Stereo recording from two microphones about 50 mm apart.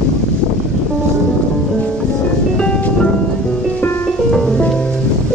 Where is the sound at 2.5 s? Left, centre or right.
Centre.